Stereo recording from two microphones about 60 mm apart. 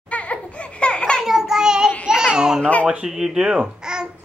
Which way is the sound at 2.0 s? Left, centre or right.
Centre.